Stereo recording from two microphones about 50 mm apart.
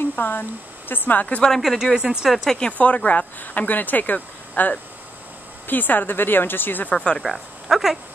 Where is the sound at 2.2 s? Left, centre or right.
Centre.